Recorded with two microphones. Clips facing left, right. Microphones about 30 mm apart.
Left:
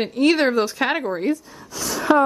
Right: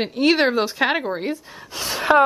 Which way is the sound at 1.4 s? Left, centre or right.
Right.